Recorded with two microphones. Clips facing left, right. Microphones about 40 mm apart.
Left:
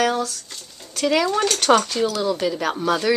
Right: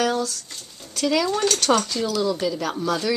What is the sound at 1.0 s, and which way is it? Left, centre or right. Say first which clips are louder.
Speech: left 2 dB; left.